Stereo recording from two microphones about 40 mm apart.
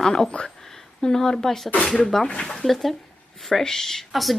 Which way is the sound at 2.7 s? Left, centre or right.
Centre.